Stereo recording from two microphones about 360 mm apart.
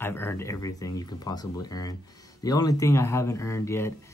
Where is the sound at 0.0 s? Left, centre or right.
Centre.